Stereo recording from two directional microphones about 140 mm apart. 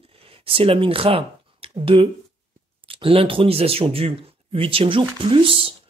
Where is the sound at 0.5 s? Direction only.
40° right (ahead or behind).